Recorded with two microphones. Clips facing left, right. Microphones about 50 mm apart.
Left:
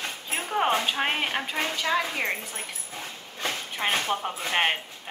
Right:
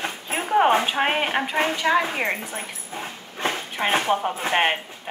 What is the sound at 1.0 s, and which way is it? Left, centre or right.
Speech, right.